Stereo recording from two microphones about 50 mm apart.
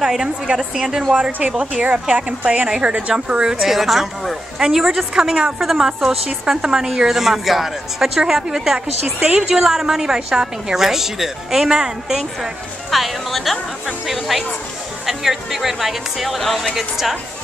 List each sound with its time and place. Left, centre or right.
0.0 s a woman's voice: centre
3.6 s a woman's voice: centre